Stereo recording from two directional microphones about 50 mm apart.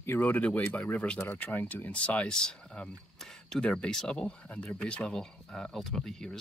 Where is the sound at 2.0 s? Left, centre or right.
Left.